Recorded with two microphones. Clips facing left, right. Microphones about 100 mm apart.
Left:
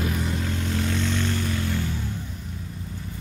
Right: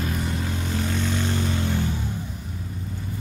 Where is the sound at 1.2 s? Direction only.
20° right (ahead or behind).